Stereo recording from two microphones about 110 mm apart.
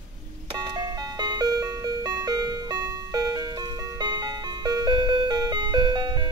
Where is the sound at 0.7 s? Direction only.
40° right (ahead or behind).